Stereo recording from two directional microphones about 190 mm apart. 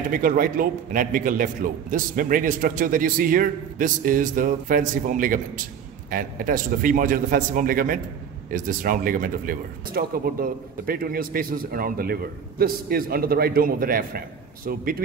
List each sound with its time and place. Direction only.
0.1 s speech: 45° right (ahead or behind)